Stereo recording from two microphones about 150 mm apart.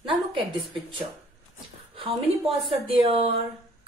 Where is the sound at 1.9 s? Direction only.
40° right (ahead or behind).